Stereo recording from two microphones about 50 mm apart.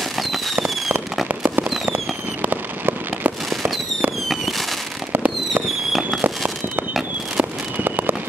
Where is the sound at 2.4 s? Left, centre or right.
Right.